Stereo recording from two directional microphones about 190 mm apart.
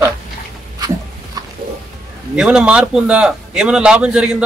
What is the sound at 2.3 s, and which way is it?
A man's voice, 5° right (ahead or behind).